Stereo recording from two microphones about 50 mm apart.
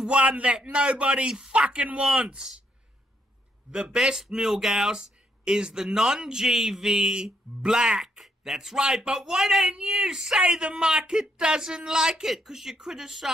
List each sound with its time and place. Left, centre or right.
0.0 s a man's voice: right
3.7 s a man's voice: centre